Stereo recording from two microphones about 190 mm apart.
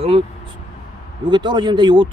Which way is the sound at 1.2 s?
25° right (ahead or behind).